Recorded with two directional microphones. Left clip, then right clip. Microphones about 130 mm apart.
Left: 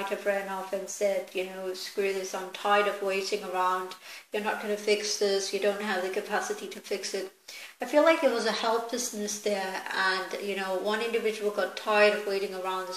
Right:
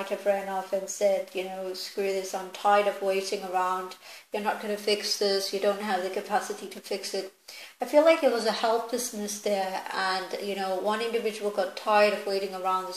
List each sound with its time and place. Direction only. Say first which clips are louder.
0.9 s speech: right 3 dB; 40° right (ahead or behind)
2.6 s speech: right 2 dB; 40° right (ahead or behind)
7.8 s speech: right 2 dB; 40° right (ahead or behind)